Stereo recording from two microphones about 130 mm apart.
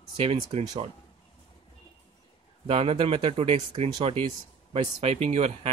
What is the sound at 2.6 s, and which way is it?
Speech, 50° right (ahead or behind).